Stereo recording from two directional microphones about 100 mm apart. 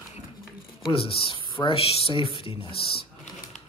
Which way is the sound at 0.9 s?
65° left (ahead or behind).